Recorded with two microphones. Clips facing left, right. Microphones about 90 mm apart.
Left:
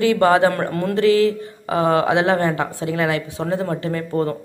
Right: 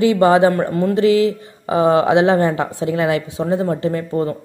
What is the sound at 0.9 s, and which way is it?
Speech, 20° right (ahead or behind).